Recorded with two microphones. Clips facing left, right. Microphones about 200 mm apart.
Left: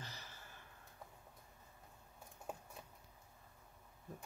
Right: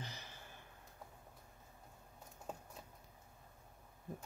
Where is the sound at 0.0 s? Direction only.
15° right (ahead or behind).